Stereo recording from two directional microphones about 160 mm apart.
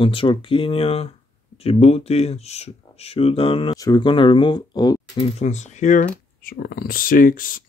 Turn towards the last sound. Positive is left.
turn(degrees=60)  # may be behind; listen again after turning